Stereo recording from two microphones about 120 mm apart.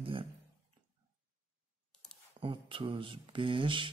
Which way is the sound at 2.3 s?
45° right (ahead or behind).